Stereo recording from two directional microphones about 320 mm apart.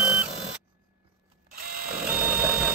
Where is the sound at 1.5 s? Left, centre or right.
Right.